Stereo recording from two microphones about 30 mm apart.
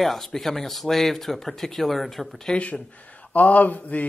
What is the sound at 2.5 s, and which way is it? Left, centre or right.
Speech, left.